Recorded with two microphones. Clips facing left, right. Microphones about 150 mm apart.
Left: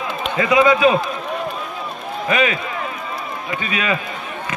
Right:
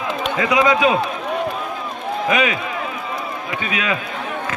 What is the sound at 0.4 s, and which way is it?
Speech, 10° right (ahead or behind).